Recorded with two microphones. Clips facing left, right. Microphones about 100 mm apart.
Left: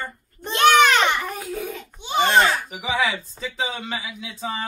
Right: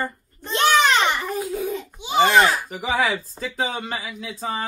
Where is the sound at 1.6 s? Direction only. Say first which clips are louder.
Right 5 dB; 25° right (ahead or behind).